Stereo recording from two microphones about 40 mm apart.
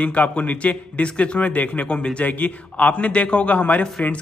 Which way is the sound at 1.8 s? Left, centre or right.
Left.